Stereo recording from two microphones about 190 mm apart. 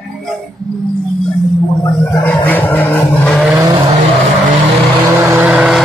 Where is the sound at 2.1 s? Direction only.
10° left (ahead or behind).